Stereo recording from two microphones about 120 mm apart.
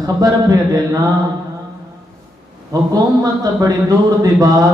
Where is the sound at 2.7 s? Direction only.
30° right (ahead or behind).